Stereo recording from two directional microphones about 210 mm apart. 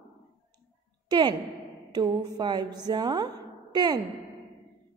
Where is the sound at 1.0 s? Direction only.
20° right (ahead or behind).